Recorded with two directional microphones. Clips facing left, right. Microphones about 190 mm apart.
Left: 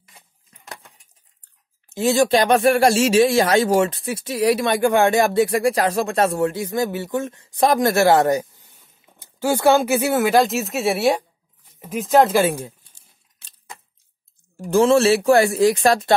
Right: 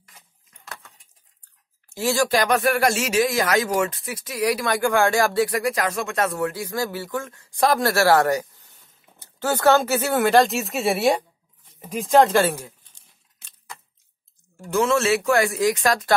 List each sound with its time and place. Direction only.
1.9 s speech: 20° left (ahead or behind)
13.4 s a sound: 30° left (ahead or behind)
14.7 s speech: 30° left (ahead or behind)